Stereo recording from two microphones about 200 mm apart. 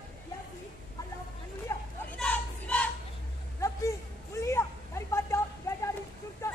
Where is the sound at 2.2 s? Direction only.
5° left (ahead or behind).